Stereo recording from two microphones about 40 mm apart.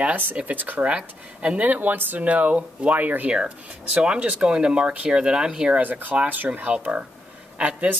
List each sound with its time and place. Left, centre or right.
0.1 s speech: right
0.8 s speech: right
1.6 s speech: right
2.1 s speech: right
3.3 s speech: right
5.8 s speech: right
7.5 s speech: right